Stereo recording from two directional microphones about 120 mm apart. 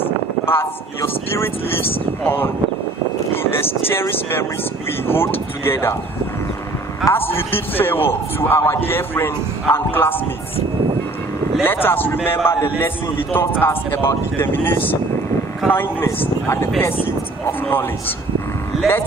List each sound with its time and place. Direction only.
0.5 s a man's voice: 20° left (ahead or behind)
3.8 s a man's voice: 20° left (ahead or behind)
7.0 s speech: centre (ahead or behind)
7.3 s a man's voice: 20° left (ahead or behind)
11.6 s a man's voice: 20° left (ahead or behind)